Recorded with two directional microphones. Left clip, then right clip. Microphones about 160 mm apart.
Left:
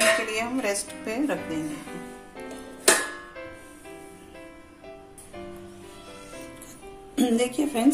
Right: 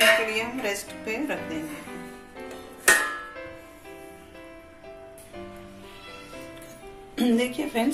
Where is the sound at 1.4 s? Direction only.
5° left (ahead or behind).